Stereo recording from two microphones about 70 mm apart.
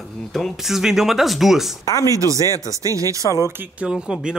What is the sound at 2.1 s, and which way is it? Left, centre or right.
Speech, right.